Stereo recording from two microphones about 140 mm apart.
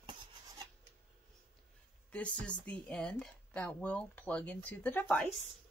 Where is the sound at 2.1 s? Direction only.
10° left (ahead or behind).